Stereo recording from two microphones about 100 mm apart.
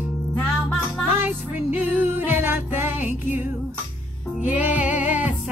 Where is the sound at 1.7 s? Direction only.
20° right (ahead or behind).